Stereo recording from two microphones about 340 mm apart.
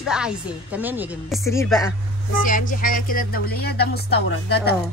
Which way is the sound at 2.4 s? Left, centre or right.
Left.